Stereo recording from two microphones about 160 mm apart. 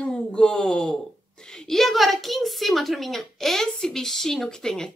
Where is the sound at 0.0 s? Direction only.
5° left (ahead or behind).